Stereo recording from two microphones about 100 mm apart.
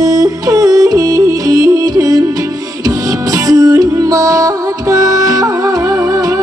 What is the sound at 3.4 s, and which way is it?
Music, 40° right (ahead or behind).